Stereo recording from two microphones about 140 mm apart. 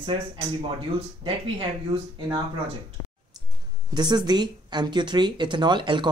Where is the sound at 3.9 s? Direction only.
30° right (ahead or behind).